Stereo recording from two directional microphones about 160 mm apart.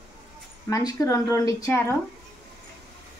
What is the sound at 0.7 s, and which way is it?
A woman's voice, 20° left (ahead or behind).